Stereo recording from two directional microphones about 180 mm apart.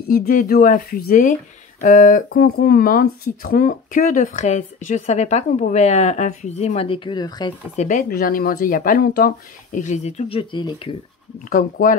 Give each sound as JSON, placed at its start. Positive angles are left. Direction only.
{"t": 0.1, "sound": "speech", "side_deg": 55}
{"t": 7.7, "sound": "speech", "side_deg": 40}
{"t": 11.4, "sound": "speech", "side_deg": 50}